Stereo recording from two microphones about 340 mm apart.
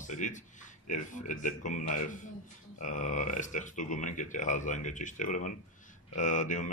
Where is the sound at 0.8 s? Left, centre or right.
Left.